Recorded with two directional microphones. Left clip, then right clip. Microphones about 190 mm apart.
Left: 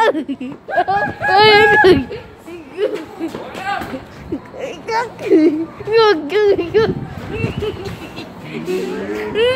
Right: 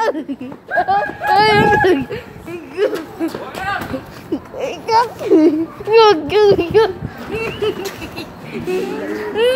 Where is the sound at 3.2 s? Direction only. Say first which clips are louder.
Right 6 dB; 25° right (ahead or behind).